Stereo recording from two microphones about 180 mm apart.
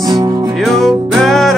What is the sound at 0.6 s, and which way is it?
Music, centre (ahead or behind).